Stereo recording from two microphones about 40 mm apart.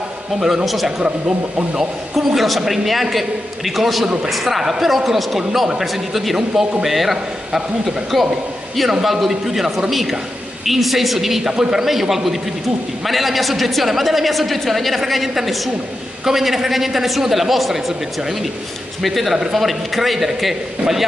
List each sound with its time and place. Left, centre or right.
0.7 s a woman's voice: centre
2.1 s a woman's voice: centre
11.5 s a man's voice: centre
11.8 s a woman's voice: centre
19.0 s a woman's voice: centre